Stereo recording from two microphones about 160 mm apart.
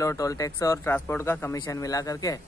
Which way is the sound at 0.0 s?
20° left (ahead or behind).